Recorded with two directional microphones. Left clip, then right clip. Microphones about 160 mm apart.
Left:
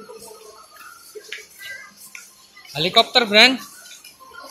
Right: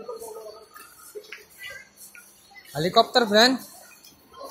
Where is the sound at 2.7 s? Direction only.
10° right (ahead or behind).